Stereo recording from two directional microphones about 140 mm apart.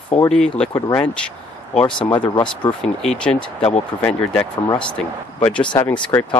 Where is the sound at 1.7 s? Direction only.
35° left (ahead or behind).